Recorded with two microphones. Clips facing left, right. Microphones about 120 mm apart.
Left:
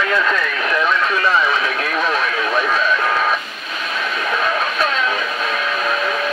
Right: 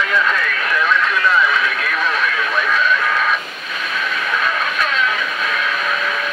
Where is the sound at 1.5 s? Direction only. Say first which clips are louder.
Even; 35° left (ahead or behind).